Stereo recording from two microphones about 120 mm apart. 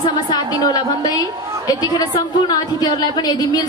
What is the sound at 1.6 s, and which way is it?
Speech, 35° left (ahead or behind).